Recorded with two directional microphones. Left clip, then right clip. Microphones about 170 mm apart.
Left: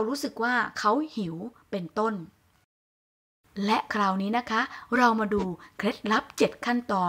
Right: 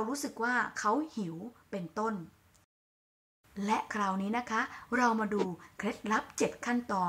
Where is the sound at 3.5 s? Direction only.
30° left (ahead or behind).